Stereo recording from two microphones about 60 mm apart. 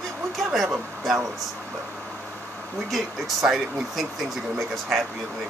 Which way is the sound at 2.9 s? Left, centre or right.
Centre.